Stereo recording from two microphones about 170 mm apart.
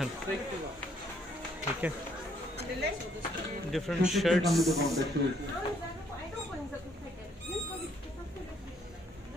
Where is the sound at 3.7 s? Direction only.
Centre (ahead or behind).